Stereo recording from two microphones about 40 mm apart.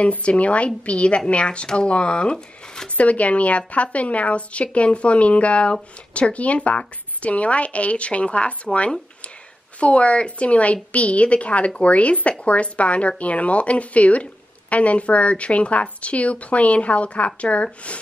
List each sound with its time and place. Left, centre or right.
0.1 s a woman's voice: left
3.0 s a woman's voice: left